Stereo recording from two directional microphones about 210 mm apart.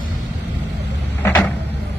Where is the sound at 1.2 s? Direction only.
10° left (ahead or behind).